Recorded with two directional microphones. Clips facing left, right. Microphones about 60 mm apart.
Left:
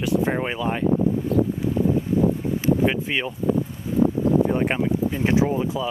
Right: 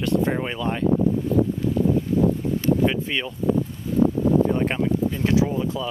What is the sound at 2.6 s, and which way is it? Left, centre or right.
Speech, centre.